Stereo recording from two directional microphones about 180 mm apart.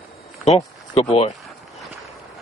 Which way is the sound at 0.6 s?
30° left (ahead or behind).